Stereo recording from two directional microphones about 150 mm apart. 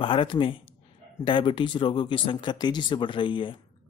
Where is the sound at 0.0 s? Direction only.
35° left (ahead or behind).